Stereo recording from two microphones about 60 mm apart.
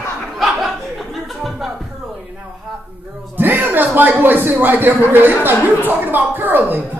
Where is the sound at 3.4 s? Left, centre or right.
Right.